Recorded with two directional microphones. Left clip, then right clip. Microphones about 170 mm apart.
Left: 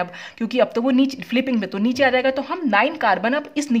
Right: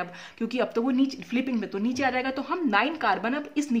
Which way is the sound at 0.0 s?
35° left (ahead or behind).